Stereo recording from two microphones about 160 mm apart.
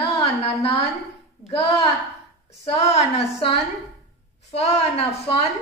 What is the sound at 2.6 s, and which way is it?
Speech, 40° left (ahead or behind).